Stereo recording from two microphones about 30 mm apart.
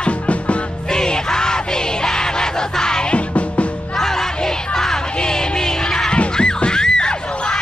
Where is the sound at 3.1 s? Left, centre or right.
Left.